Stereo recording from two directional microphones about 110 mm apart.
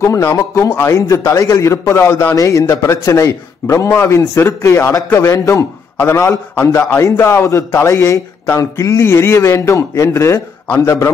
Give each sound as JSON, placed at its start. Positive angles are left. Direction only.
{"t": 0.0, "sound": "speech", "side_deg": 25}